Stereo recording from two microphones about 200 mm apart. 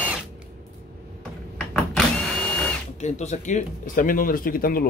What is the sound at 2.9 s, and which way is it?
Speech, 35° left (ahead or behind).